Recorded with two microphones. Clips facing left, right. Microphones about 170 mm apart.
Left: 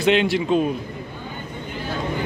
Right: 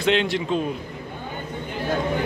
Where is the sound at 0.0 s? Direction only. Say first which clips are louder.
Left 3 dB; 10° left (ahead or behind).